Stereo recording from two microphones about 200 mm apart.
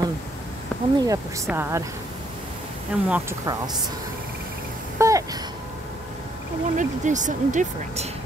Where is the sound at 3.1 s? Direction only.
5° right (ahead or behind).